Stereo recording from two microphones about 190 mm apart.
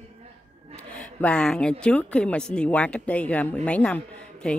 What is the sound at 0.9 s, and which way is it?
Speech, 5° left (ahead or behind).